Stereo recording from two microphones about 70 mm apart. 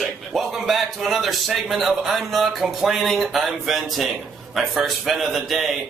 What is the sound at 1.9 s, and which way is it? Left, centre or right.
Speech, centre.